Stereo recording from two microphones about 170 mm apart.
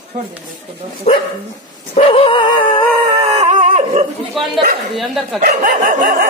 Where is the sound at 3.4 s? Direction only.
45° right (ahead or behind).